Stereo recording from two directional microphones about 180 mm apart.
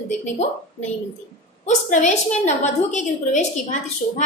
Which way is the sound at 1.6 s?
40° left (ahead or behind).